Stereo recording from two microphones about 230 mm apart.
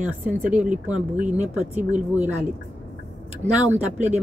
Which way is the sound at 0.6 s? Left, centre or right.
Centre.